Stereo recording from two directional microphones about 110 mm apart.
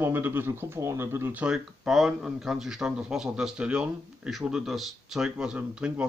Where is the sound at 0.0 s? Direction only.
20° right (ahead or behind).